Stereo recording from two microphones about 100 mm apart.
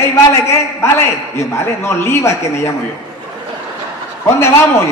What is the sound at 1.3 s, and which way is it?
A man's voice, 25° left (ahead or behind).